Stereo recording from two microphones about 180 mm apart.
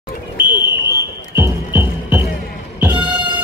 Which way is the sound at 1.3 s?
15° right (ahead or behind).